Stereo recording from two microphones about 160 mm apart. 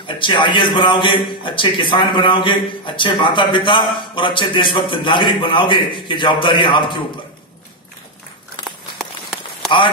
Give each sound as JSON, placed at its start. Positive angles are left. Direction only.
{"t": 0.2, "sound": "a man's voice", "side_deg": 30}
{"t": 8.9, "sound": "run", "side_deg": 0}